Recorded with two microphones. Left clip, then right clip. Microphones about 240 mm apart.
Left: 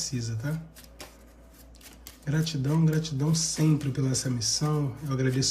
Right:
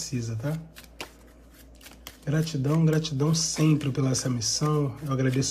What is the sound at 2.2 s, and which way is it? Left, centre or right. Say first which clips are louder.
Speech: right 2 dB; centre.